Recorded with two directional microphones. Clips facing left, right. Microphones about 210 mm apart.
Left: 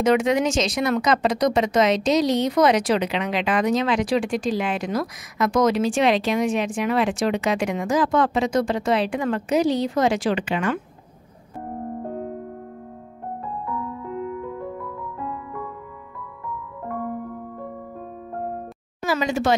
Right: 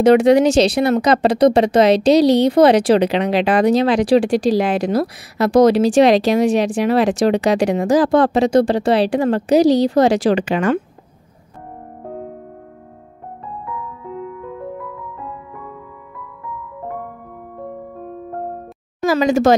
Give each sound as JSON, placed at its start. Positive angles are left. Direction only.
{"t": 0.0, "sound": "speech", "side_deg": -35}
{"t": 19.0, "sound": "speech", "side_deg": -40}